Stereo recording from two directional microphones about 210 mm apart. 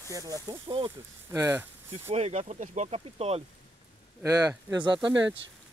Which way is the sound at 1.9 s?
30° right (ahead or behind).